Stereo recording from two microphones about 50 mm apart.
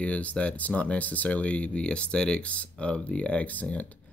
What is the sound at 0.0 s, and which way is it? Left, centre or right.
Speech, left.